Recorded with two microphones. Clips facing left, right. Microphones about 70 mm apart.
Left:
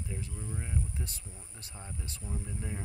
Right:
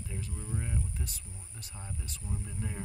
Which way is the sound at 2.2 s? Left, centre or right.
Centre.